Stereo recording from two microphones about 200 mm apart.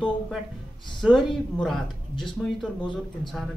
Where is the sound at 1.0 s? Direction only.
Centre (ahead or behind).